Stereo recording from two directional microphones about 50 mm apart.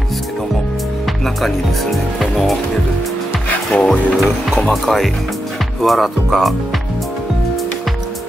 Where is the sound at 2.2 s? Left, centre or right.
Centre.